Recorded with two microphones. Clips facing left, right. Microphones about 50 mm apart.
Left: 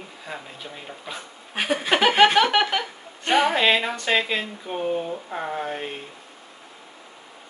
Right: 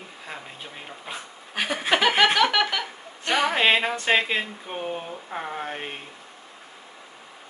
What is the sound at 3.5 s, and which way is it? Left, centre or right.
Speech, centre.